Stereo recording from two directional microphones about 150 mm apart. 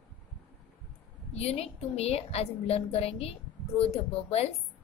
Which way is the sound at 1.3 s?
45° left (ahead or behind).